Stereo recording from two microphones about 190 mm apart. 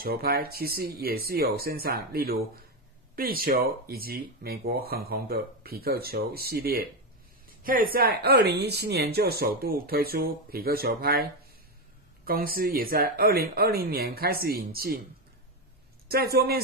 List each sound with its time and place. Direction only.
0.0 s a woman's voice: 55° right (ahead or behind)
12.3 s a woman's voice: 50° right (ahead or behind)
16.1 s speech: 55° right (ahead or behind)